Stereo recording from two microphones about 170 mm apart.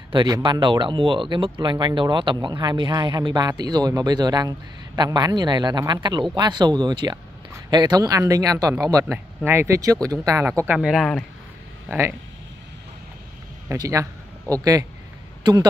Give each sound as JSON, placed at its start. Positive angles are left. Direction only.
{"t": 0.1, "sound": "speech", "side_deg": -25}
{"t": 10.8, "sound": "speech", "side_deg": 0}
{"t": 13.7, "sound": "speech", "side_deg": -20}